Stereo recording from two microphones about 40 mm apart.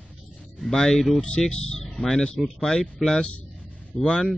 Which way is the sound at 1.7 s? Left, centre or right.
Centre.